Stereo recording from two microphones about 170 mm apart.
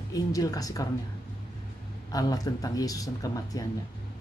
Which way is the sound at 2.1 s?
20° left (ahead or behind).